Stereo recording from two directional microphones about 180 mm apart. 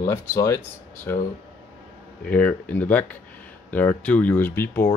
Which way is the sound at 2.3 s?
10° left (ahead or behind).